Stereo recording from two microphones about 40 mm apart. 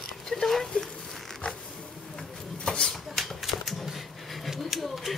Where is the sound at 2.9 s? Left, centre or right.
Centre.